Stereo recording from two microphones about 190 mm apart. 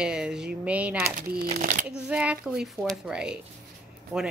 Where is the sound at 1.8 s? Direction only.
5° right (ahead or behind).